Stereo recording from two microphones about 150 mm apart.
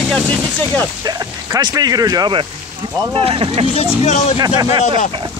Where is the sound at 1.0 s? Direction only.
25° right (ahead or behind).